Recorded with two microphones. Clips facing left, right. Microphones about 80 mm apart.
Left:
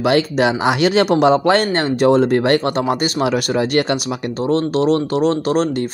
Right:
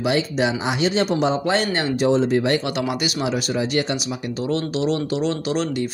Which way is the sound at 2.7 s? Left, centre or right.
Left.